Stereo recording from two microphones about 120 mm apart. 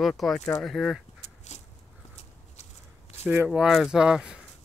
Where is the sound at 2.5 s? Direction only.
70° left (ahead or behind).